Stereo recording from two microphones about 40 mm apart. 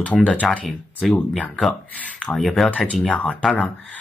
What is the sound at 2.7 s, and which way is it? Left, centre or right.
Speech, left.